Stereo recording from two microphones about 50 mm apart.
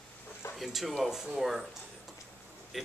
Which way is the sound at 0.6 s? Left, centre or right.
Centre.